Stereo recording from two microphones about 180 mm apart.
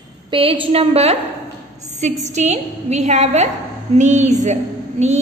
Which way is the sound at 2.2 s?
40° right (ahead or behind).